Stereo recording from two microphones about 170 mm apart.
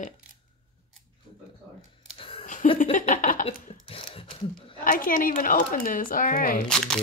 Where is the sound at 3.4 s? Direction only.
35° left (ahead or behind).